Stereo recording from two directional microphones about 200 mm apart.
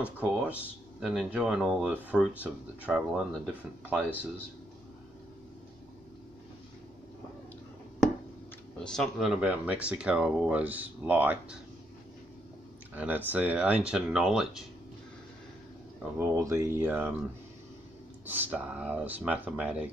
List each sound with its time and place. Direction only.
0.2 s speech: 5° right (ahead or behind)
8.7 s speech: 5° left (ahead or behind)
12.9 s speech: 10° right (ahead or behind)
16.2 s speech: 15° right (ahead or behind)
18.2 s speech: 5° right (ahead or behind)